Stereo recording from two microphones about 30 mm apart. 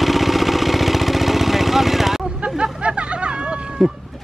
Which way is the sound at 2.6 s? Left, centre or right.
Right.